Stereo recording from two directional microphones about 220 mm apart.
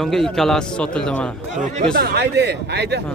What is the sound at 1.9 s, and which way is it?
Speech, 45° right (ahead or behind).